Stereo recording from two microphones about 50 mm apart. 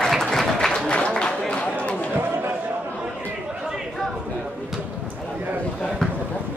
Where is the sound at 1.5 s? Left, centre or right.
Left.